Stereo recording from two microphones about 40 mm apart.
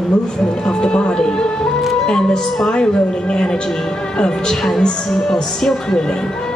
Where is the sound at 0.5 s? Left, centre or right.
Centre.